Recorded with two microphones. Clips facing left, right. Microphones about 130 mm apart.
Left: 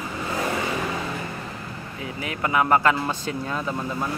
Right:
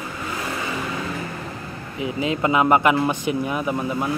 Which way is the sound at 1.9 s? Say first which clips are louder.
Right 9 dB; 20° right (ahead or behind).